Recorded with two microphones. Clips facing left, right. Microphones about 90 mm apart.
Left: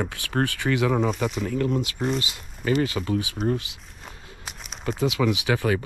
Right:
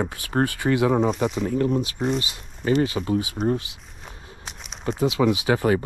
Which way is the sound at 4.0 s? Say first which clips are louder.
Even; centre (ahead or behind).